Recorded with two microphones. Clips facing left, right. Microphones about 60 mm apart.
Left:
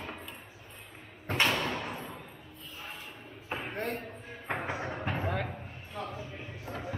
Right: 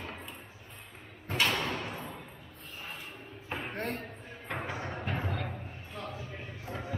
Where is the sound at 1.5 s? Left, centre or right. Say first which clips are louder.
Left 1 dB; centre.